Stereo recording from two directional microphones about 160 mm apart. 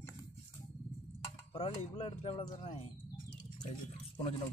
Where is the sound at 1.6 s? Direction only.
40° left (ahead or behind).